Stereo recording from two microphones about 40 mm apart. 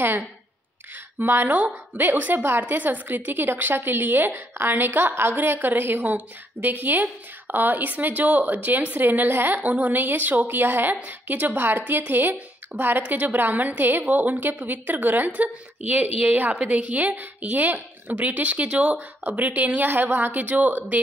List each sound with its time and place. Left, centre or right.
1.2 s a woman's voice: right
1.5 s a woman's voice: right
4.7 s a woman's voice: right
9.3 s a woman's voice: right
9.6 s a woman's voice: right
11.1 s a woman's voice: right
19.9 s a woman's voice: right